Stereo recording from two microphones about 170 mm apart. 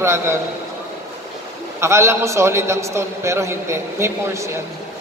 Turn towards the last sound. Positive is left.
turn(degrees=-15)  # may be behind; listen again after turning